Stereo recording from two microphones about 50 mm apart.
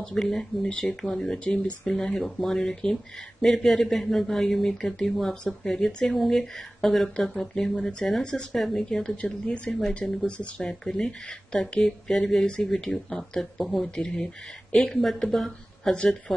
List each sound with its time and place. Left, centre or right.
0.1 s speech: centre
0.7 s speech: left
1.0 s speech: centre
6.1 s speech: centre
9.1 s speech: left; by 15.9 s centre
15.9 s speech: centre